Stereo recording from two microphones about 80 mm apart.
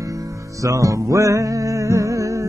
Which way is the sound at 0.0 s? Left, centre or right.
Right.